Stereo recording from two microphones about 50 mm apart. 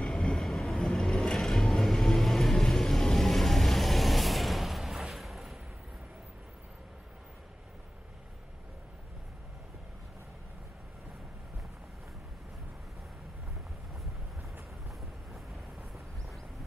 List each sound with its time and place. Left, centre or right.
0.0 s train: centre
0.4 s vehicle: centre
5.1 s a sound: centre